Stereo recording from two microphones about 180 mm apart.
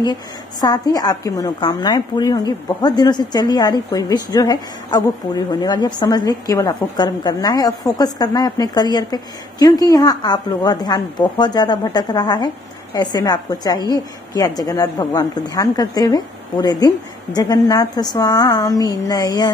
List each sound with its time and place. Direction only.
0.0 s a woman's voice: 20° left (ahead or behind)